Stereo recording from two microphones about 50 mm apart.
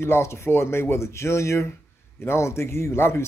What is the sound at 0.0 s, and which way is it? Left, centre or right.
A man's voice, left.